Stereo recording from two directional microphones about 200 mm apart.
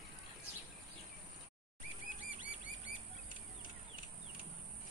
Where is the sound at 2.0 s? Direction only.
40° left (ahead or behind).